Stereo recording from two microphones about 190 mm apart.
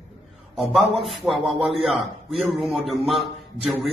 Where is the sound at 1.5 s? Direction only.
30° right (ahead or behind).